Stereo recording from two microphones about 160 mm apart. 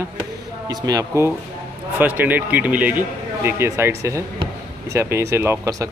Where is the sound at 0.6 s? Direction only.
25° right (ahead or behind).